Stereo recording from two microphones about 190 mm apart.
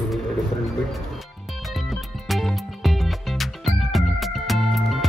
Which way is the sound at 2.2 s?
Centre (ahead or behind).